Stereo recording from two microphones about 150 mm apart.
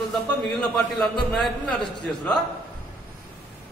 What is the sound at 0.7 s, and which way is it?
A man's voice, 5° left (ahead or behind).